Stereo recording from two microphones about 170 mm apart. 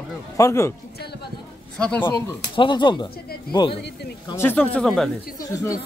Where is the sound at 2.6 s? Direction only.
25° left (ahead or behind).